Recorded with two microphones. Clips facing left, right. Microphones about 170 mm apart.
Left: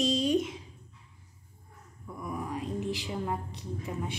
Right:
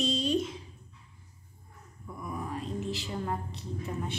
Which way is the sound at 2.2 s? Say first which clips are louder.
Left 1 dB; 10° left (ahead or behind).